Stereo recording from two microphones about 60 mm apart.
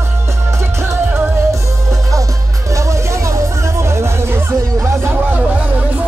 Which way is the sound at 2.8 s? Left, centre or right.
Right.